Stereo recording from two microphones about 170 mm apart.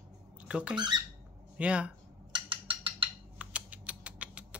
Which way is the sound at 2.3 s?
30° right (ahead or behind).